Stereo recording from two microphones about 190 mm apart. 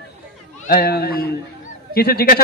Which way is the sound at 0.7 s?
55° left (ahead or behind).